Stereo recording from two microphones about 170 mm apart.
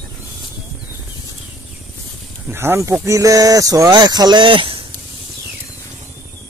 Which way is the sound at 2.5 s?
15° right (ahead or behind).